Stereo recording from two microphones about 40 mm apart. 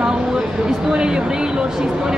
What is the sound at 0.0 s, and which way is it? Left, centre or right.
A woman's voice, centre.